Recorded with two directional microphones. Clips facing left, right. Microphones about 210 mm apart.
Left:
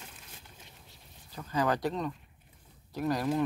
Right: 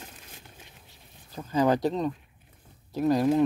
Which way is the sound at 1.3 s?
25° right (ahead or behind).